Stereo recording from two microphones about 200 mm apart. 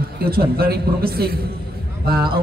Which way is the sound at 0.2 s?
50° right (ahead or behind).